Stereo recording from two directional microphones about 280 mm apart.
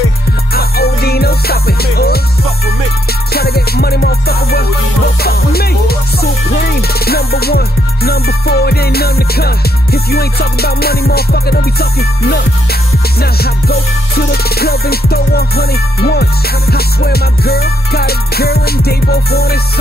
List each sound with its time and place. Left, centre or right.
0.6 s music: left
3.3 s music: left
7.1 s music: left